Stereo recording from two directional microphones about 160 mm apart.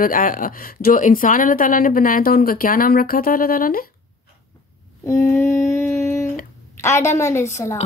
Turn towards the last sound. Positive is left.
turn(degrees=20)  # may be behind; listen again after turning